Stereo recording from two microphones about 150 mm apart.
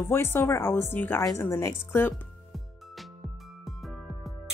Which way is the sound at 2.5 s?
Centre (ahead or behind).